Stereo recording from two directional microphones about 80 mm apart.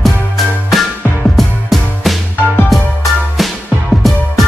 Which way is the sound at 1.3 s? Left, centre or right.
Centre.